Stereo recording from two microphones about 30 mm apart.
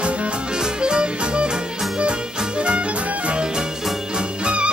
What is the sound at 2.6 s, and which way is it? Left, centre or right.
Music, right.